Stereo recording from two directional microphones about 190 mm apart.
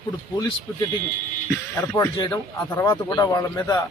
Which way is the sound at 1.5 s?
10° left (ahead or behind).